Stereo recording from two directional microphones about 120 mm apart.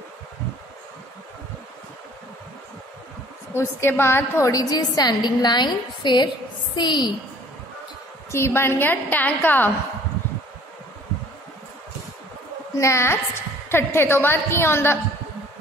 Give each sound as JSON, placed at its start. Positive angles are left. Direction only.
{"t": 3.5, "sound": "a woman's voice", "side_deg": 20}
{"t": 8.3, "sound": "a woman's voice", "side_deg": 20}
{"t": 12.7, "sound": "a woman's voice", "side_deg": 25}